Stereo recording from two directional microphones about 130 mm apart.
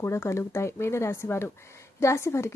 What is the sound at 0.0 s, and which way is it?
Speech, 20° left (ahead or behind).